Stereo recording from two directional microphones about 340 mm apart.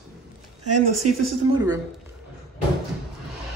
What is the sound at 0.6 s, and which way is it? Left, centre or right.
Speech, right.